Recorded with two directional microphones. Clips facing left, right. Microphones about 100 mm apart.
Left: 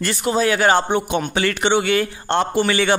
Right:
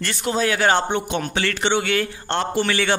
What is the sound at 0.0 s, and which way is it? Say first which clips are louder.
A man's voice: left 3 dB; 10° left (ahead or behind).